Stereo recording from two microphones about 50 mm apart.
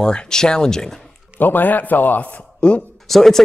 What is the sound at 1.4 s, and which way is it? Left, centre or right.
A man's voice, left.